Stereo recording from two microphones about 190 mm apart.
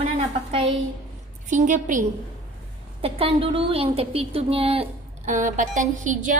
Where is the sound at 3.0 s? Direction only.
30° right (ahead or behind).